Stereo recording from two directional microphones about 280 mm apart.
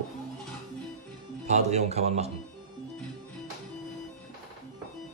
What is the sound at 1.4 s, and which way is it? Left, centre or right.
Speech, right.